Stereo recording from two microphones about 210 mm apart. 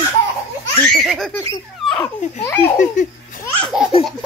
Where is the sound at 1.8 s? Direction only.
Centre (ahead or behind).